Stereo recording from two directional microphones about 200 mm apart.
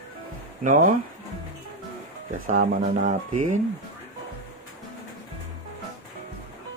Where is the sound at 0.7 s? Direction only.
40° right (ahead or behind).